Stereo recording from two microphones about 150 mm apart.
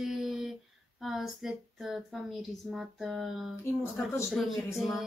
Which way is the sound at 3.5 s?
15° left (ahead or behind).